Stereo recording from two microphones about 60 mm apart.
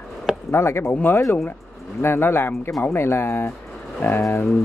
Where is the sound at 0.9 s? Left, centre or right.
Left.